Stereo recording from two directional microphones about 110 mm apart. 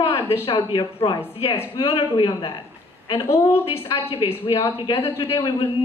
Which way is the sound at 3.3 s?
25° left (ahead or behind).